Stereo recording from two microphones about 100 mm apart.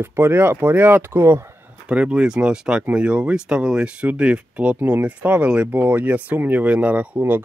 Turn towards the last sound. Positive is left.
turn(degrees=-20)  # may be behind; listen again after turning